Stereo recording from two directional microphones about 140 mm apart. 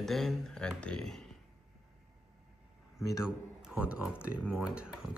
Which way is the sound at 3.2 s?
5° right (ahead or behind).